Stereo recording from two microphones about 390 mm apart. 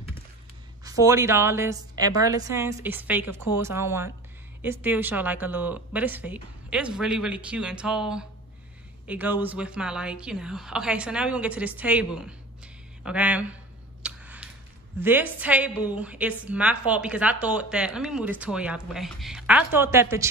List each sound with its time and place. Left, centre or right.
0.8 s a woman's voice: centre
14.0 s a sound: centre
15.0 s a woman's voice: centre